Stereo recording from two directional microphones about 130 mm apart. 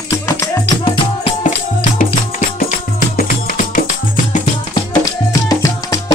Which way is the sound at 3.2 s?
90° left.